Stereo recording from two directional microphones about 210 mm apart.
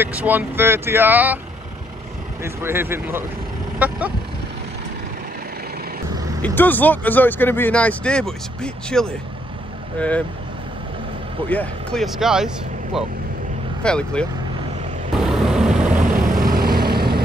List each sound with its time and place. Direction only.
0.0 s speech: 10° right (ahead or behind)
2.4 s speech: 10° right (ahead or behind)
6.4 s speech: 10° left (ahead or behind)
11.4 s speech: 5° left (ahead or behind)
13.8 s speech: 5° left (ahead or behind)
15.1 s vehicle: 5° right (ahead or behind)
16.1 s vehicle: 40° right (ahead or behind)